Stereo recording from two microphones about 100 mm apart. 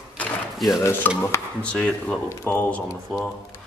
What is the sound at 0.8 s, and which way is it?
Stir, 20° left (ahead or behind).